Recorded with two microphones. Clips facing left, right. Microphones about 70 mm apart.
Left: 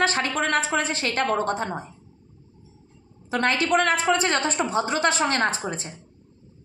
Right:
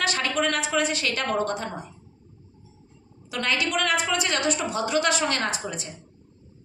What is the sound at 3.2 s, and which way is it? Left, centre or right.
A woman's voice, left.